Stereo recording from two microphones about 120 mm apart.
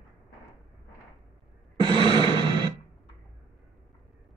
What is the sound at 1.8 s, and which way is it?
Music, 35° right (ahead or behind).